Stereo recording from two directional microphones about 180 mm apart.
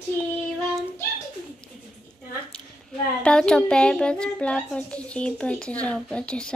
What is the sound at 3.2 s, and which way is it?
A woman's voice, 5° left (ahead or behind).